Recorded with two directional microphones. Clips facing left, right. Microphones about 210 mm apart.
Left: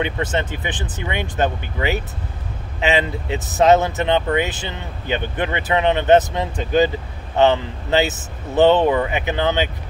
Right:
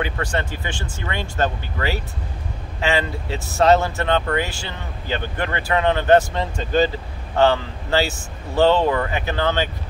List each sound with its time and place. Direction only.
0.0 s speech: 20° left (ahead or behind)